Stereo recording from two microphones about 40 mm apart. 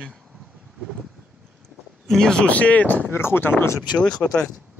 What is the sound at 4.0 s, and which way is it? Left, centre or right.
Speech, left.